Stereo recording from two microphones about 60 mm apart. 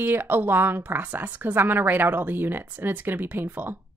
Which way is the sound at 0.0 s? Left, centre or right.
Right.